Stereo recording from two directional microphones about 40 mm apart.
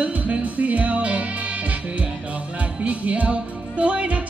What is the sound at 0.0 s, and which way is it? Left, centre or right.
Music, right.